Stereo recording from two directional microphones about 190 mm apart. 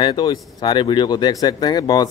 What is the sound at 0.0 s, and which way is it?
Speech, 20° left (ahead or behind).